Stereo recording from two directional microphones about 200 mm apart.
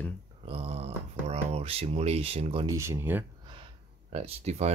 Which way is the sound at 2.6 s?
15° right (ahead or behind).